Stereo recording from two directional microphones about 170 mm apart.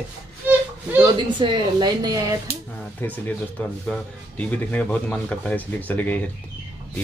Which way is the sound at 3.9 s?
10° left (ahead or behind).